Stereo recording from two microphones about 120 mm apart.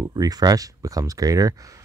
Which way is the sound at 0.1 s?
35° right (ahead or behind).